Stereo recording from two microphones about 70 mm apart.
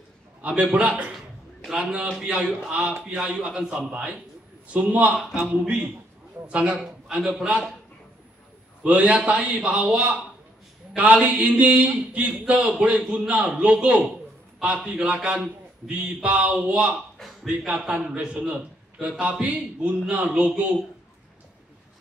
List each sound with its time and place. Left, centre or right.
0.4 s a man's voice: right
5.1 s speech: centre
6.4 s a man's voice: centre
8.8 s a man's voice: right
12.6 s a man's voice: centre
13.3 s a man's voice: centre